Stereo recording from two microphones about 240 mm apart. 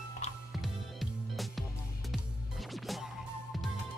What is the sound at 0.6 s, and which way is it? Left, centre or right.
Music, centre.